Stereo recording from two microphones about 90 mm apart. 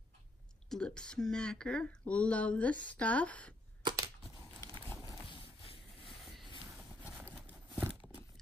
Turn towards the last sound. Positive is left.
turn(degrees=-15)  # may be behind; listen again after turning